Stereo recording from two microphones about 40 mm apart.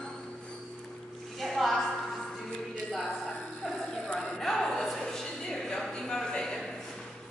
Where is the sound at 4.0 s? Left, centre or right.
Left.